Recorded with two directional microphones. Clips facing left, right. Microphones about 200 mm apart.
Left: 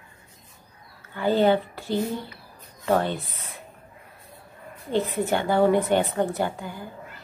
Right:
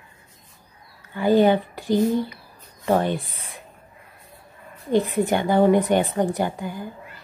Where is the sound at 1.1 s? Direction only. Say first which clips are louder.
Right 3 dB; 15° right (ahead or behind).